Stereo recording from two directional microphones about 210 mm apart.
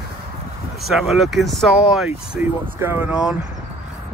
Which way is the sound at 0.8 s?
Centre (ahead or behind).